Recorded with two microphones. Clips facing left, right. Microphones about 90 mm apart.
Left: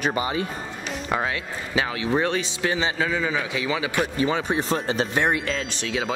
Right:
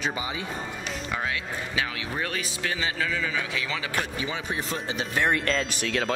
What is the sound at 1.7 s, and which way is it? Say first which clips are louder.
A man's voice: left 9 dB; 30° left (ahead or behind).